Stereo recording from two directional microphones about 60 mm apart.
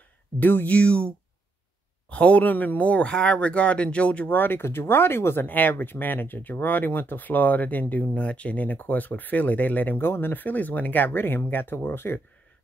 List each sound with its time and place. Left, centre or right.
0.4 s speech: left
0.7 s speech: centre
4.3 s speech: left